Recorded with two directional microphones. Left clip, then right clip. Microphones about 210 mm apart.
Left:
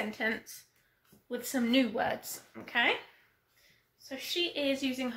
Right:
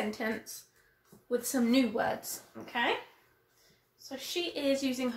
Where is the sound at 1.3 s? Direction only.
10° left (ahead or behind).